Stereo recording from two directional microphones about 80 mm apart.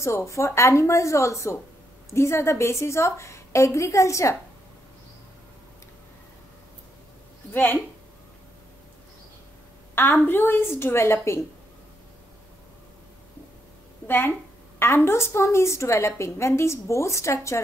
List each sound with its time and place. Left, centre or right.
0.0 s a woman's voice: left
7.5 s a woman's voice: left
9.9 s a woman's voice: left
14.0 s a woman's voice: left